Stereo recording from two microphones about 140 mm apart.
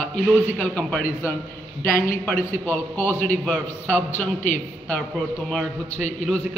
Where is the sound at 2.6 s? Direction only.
15° left (ahead or behind).